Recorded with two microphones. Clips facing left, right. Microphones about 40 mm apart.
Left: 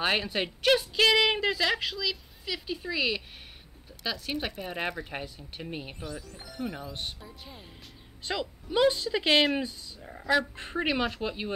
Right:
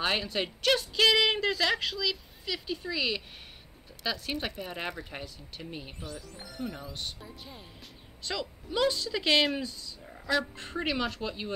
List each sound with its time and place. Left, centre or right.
0.0 s a woman's voice: centre
6.3 s a woman's voice: centre
6.9 s a woman's voice: left
7.2 s a woman's voice: centre
8.2 s a woman's voice: left